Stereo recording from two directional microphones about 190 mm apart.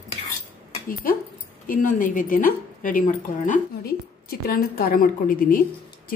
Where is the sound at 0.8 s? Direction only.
50° left (ahead or behind).